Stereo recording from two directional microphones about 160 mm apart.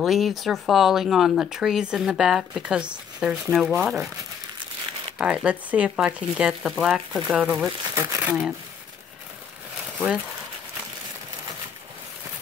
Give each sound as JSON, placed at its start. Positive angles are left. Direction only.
{"t": 0.0, "sound": "speech", "side_deg": 0}
{"t": 5.2, "sound": "speech", "side_deg": -5}
{"t": 7.6, "sound": "speech", "side_deg": -20}